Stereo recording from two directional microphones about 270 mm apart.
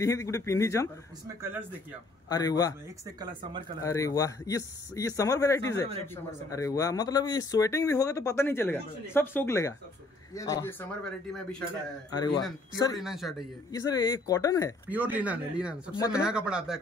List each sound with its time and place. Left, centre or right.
0.0 s speech: centre
2.2 s speech: centre
3.2 s speech: centre
3.8 s speech: centre
12.9 s speech: centre
13.7 s speech: centre
14.9 s speech: centre